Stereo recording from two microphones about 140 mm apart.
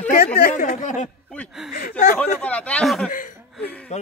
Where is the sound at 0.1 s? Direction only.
85° left.